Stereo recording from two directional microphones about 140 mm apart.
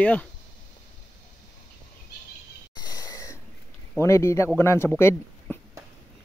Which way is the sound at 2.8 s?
25° left (ahead or behind).